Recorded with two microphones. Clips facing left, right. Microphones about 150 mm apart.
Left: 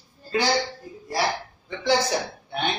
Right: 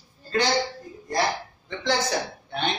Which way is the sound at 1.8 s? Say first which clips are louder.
Left 3 dB; 10° left (ahead or behind).